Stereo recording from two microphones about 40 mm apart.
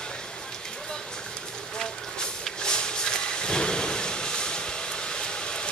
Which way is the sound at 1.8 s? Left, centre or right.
Centre.